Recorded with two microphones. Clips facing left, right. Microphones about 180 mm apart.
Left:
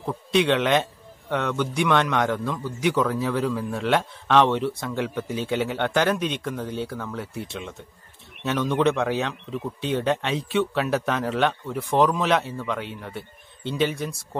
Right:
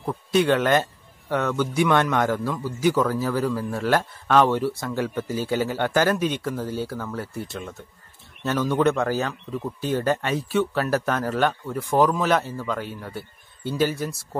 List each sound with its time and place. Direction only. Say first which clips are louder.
0.0 s a man's voice: right 1 dB; centre (ahead or behind)